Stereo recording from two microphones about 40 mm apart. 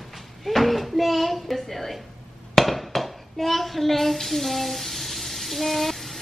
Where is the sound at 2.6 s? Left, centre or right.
Centre.